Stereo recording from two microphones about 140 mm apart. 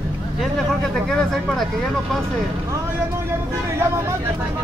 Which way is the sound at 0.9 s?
5° left (ahead or behind).